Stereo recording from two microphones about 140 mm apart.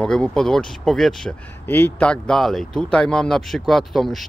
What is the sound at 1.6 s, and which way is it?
Speech, 15° left (ahead or behind).